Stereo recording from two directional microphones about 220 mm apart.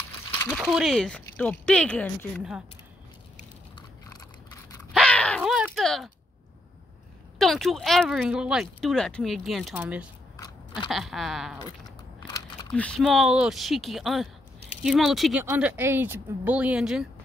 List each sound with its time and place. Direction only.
0.5 s speech: centre (ahead or behind)
4.1 s a sound: 15° left (ahead or behind)
4.9 s crow: 5° left (ahead or behind)
7.3 s speech: centre (ahead or behind)
10.3 s biting: 20° left (ahead or behind)
10.9 s speech: centre (ahead or behind)
11.6 s a sound: 15° left (ahead or behind)
12.7 s speech: 5° left (ahead or behind)